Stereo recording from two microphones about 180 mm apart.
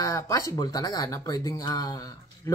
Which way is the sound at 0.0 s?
20° left (ahead or behind).